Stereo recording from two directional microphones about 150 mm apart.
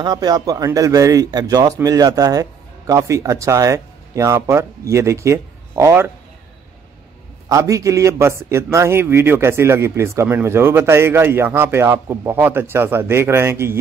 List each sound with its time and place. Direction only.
0.0 s speech: 25° right (ahead or behind)
7.4 s a man's voice: 20° right (ahead or behind)